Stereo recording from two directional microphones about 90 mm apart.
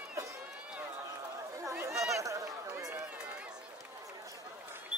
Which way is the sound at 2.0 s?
35° right (ahead or behind).